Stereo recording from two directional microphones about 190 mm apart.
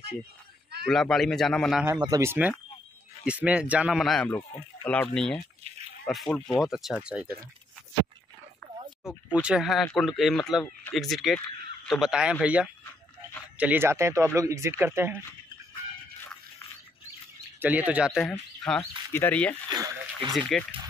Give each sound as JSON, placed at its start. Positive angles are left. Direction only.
{"t": 0.8, "sound": "speech", "side_deg": 0}
{"t": 2.0, "sound": "speech", "side_deg": -20}
{"t": 9.3, "sound": "speech", "side_deg": -5}
{"t": 17.6, "sound": "speech", "side_deg": -10}
{"t": 18.8, "sound": "speech", "side_deg": 10}
{"t": 19.7, "sound": "speech", "side_deg": -20}
{"t": 20.5, "sound": "speech", "side_deg": 0}